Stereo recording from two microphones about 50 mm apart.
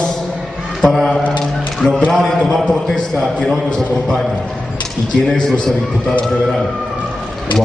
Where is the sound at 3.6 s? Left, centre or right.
Centre.